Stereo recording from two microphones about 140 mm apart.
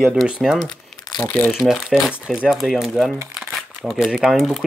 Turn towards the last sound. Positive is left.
turn(degrees=0)  # may be behind; listen again after turning